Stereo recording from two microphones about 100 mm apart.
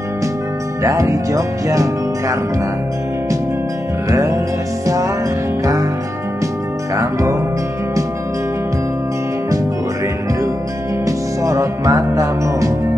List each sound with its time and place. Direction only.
0.8 s speech: 30° right (ahead or behind)
4.1 s speech: 35° right (ahead or behind)
5.6 s music: 35° right (ahead or behind)
7.0 s speech: 35° right (ahead or behind)
11.1 s music: 35° right (ahead or behind)